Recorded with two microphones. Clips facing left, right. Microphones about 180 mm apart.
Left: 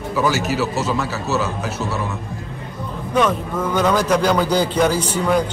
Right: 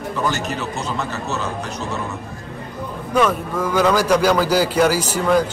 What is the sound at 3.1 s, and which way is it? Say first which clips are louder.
A man's voice: even; 10° right (ahead or behind).